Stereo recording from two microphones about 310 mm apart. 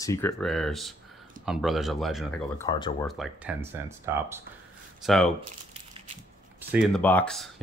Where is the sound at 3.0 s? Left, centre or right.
Centre.